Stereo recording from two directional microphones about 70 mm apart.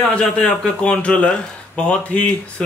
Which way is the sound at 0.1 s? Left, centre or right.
Centre.